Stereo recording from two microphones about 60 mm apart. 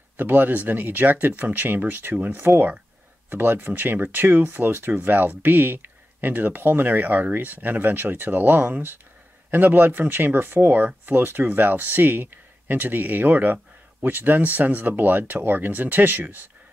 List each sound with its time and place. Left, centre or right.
0.2 s speech: right